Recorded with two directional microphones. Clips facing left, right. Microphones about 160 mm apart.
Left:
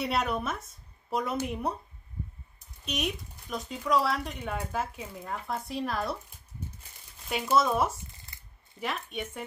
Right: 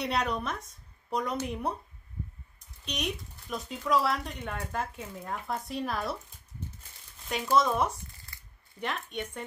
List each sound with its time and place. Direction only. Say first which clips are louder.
0.0 s speech: left 1 dB; 5° left (ahead or behind)
2.8 s speech: left 2 dB; centre (ahead or behind)
7.5 s speech: even; 5° left (ahead or behind)